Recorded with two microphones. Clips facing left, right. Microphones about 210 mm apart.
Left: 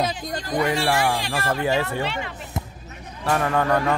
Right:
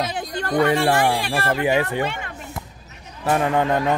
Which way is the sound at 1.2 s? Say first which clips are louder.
Right 3 dB; 55° right (ahead or behind).